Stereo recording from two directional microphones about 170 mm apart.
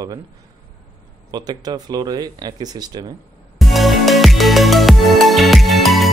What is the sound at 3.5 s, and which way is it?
Music, centre (ahead or behind).